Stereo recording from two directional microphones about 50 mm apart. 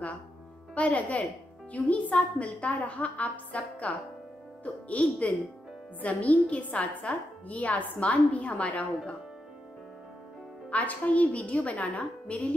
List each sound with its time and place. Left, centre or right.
0.7 s a woman's voice: left
10.7 s a woman's voice: left